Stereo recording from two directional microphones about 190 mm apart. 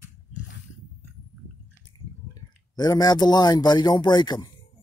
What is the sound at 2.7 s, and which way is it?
Speech, 20° left (ahead or behind).